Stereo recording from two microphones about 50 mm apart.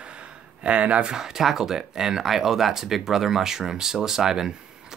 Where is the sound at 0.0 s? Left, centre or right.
Right.